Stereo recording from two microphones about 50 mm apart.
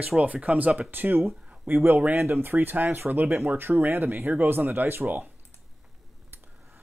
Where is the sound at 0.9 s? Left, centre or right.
Right.